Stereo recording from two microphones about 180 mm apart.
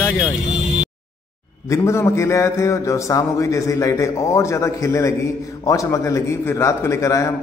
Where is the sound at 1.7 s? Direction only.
15° left (ahead or behind).